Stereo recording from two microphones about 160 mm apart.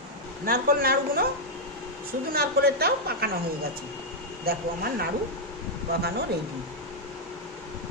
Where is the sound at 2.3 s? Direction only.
75° right (ahead or behind).